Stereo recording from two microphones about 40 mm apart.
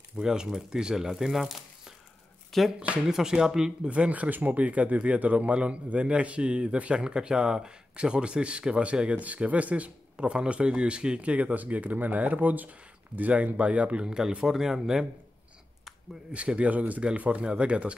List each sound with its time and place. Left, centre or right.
0.1 s speech: centre
2.5 s speech: centre
3.1 s speech: centre
3.9 s a man's voice: right
9.1 s speech: right
10.1 s a man's voice: right
14.0 s a man's voice: centre
16.3 s speech: right